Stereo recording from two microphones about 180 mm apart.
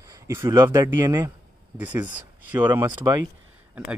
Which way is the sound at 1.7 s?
10° right (ahead or behind).